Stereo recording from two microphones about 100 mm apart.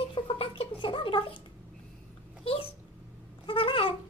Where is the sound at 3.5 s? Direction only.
60° left (ahead or behind).